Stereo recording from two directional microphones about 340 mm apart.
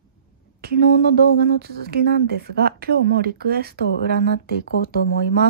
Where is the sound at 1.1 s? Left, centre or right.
Right.